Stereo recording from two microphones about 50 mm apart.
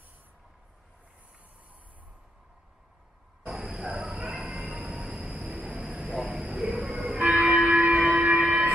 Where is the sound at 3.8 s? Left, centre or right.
Centre.